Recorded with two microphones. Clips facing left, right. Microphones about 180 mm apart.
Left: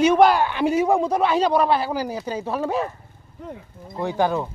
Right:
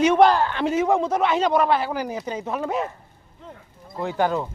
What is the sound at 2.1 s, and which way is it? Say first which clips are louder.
Speech: left 1 dB; 10° left (ahead or behind).